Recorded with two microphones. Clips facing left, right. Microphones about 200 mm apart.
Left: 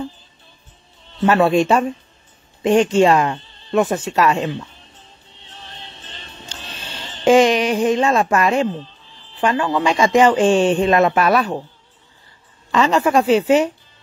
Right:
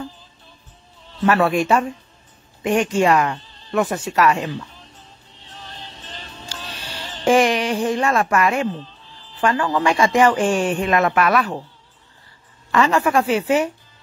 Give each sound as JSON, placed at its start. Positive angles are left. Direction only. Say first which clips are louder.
{"t": 1.2, "sound": "a man's voice", "louder": "left 3 dB", "side_deg": 25}
{"t": 6.4, "sound": "music", "louder": "even", "side_deg": 20}
{"t": 7.2, "sound": "a man's voice", "louder": "left 3 dB", "side_deg": 20}
{"t": 12.7, "sound": "a man's voice", "louder": "left 2 dB", "side_deg": 20}